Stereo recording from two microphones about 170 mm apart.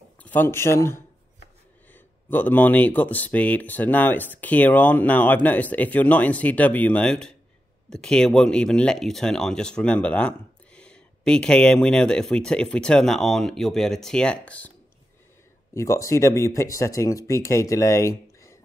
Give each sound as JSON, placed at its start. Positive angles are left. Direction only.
{"t": 0.2, "sound": "speech", "side_deg": 10}
{"t": 15.7, "sound": "speech", "side_deg": 15}